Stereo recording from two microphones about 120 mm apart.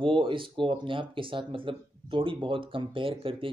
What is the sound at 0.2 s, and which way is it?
Speech, 45° right (ahead or behind).